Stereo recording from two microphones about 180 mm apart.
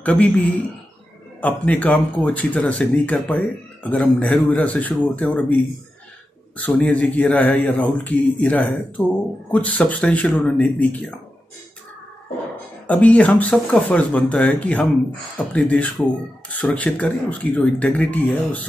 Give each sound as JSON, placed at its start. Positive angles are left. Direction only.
{"t": 0.0, "sound": "a man's voice", "side_deg": 10}
{"t": 1.4, "sound": "speech", "side_deg": 10}
{"t": 12.8, "sound": "speech", "side_deg": 5}